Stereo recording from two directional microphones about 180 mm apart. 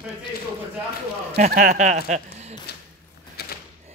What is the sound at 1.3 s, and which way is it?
Speech, 45° right (ahead or behind).